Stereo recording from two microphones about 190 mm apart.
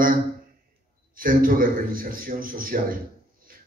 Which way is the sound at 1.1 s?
50° right (ahead or behind).